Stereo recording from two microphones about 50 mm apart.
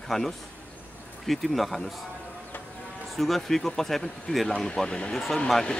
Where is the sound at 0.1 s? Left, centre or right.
Centre.